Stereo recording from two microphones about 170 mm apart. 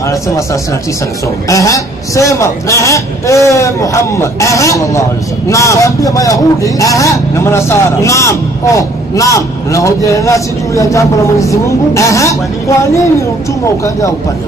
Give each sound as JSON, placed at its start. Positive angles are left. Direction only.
{"t": 1.5, "sound": "speech", "side_deg": 20}